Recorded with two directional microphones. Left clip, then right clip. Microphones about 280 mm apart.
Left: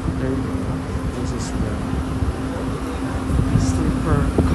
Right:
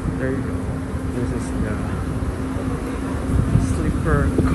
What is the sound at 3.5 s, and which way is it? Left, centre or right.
Vehicle, centre.